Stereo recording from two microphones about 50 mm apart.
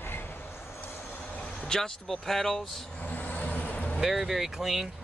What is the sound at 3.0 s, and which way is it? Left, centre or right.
Vehicle, left.